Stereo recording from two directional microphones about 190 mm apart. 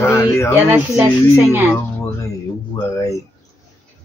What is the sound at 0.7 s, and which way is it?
Speech, 5° right (ahead or behind).